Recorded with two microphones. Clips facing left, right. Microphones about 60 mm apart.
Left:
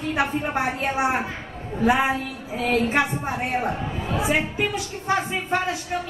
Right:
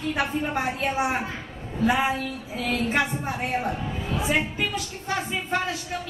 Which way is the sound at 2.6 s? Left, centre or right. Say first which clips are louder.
Left 4 dB; left.